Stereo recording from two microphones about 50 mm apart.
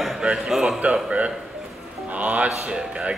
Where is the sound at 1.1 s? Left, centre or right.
Right.